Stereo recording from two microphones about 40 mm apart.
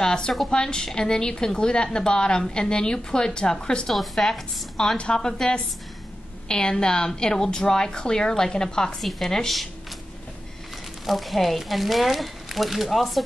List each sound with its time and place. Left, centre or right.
0.0 s a woman's voice: centre
3.9 s a woman's voice: centre
4.9 s a woman's voice: left; by 9.7 s centre
11.1 s speech: centre